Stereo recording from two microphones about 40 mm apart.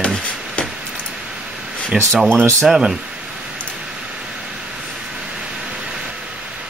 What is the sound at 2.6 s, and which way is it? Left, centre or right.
Speech, centre.